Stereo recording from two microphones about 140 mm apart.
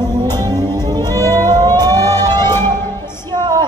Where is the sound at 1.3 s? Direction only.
30° right (ahead or behind).